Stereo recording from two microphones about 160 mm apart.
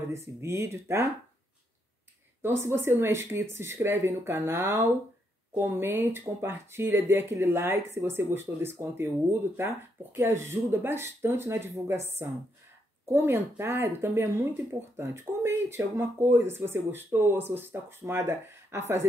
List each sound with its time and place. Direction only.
0.1 s speech: 15° right (ahead or behind)
2.4 s speech: 15° right (ahead or behind)
13.1 s speech: 15° right (ahead or behind)